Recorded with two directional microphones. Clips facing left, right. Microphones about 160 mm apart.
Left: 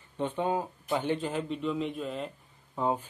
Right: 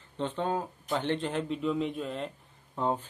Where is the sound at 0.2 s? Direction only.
10° left (ahead or behind).